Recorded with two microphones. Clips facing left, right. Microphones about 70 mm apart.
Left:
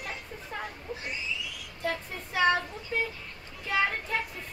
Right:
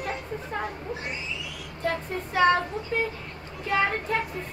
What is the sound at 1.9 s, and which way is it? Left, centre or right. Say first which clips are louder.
Child singing: right 5 dB; right.